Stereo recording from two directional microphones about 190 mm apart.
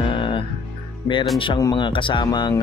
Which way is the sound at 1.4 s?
25° left (ahead or behind).